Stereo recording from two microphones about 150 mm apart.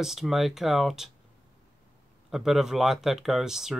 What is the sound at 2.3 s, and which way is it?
Speech, centre (ahead or behind).